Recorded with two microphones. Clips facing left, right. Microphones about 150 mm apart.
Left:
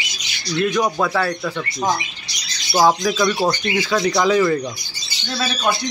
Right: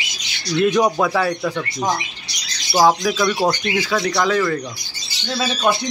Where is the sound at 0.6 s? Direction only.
20° right (ahead or behind).